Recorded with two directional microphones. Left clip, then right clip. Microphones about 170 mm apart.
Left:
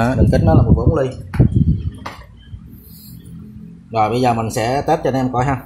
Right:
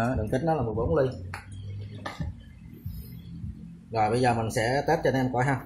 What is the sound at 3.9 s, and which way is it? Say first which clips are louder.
Speech: left 9 dB; 35° left (ahead or behind).